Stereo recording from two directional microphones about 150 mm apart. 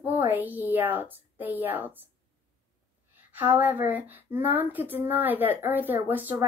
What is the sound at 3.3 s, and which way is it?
Speech, 10° right (ahead or behind).